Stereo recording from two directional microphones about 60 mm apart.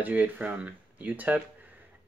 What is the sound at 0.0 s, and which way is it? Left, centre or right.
Speech, right.